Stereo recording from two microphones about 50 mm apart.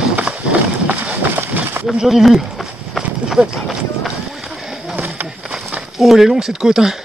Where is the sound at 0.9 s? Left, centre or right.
Right.